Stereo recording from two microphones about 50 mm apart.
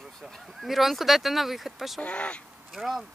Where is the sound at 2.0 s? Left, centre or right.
Left.